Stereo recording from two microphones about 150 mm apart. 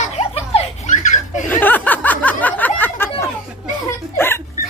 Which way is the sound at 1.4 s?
10° left (ahead or behind).